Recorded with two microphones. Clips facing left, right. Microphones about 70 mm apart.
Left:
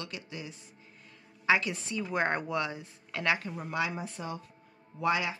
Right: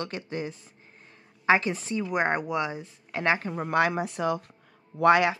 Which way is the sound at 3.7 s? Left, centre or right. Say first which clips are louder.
Right 9 dB; right.